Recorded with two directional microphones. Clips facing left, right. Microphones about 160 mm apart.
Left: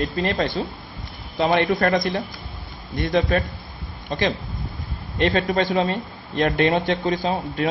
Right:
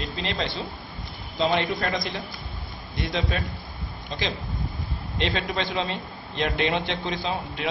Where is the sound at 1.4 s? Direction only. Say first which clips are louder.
Left 5 dB; 60° left (ahead or behind).